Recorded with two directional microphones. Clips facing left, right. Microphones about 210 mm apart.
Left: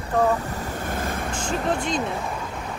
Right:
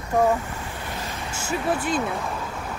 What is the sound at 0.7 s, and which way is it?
Vehicle, 50° left (ahead or behind).